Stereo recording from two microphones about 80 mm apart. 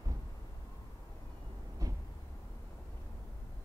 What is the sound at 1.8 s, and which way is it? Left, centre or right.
Vehicle, right.